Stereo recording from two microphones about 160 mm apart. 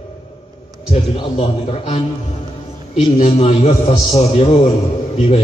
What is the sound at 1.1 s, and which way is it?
Speech, 35° left (ahead or behind).